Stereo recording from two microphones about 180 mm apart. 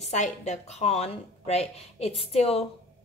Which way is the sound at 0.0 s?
40° left (ahead or behind).